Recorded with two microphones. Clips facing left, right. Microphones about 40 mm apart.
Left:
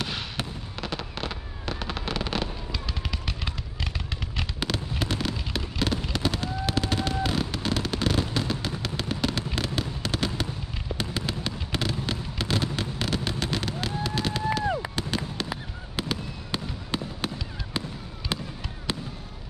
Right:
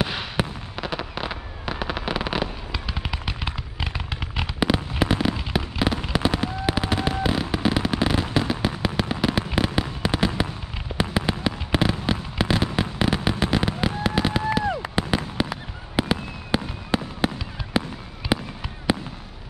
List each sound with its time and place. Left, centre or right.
0.0 s fireworks: centre
18.3 s fireworks: centre